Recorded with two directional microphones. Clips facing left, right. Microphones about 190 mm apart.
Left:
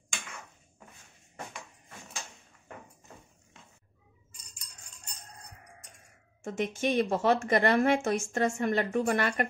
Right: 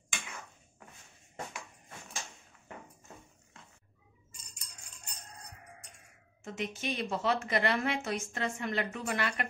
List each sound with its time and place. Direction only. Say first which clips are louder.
6.4 s a woman's voice: left 7 dB; 50° left (ahead or behind)